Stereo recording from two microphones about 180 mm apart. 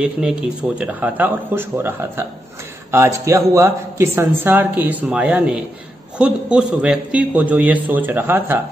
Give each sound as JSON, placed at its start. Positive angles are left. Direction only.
{"t": 0.0, "sound": "a man's voice", "side_deg": -5}